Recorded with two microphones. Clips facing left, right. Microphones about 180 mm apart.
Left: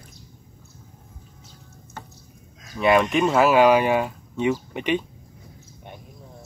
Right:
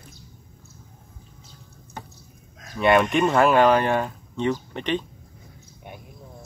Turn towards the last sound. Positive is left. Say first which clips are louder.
# left 2 dB
turn(degrees=10)  # may be behind; listen again after turning